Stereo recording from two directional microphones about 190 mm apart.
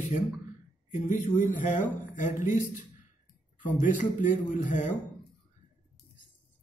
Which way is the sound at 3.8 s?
40° left (ahead or behind).